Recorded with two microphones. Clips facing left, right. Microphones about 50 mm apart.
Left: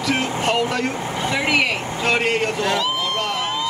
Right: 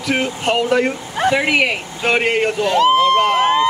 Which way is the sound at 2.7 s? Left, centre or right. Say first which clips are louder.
Right 10 dB; right.